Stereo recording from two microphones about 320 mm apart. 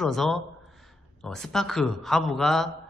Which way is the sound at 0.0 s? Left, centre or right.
Centre.